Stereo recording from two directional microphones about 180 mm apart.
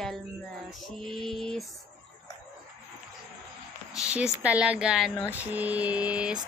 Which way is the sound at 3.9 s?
5° right (ahead or behind).